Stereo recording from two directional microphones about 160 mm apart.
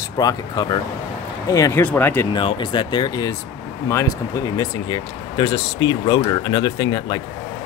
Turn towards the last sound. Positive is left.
turn(degrees=25)  # may be behind; listen again after turning